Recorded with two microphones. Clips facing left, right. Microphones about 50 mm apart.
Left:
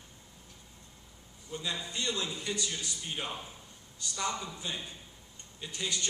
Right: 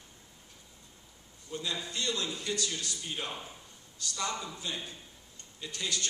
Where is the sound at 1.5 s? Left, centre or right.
Left.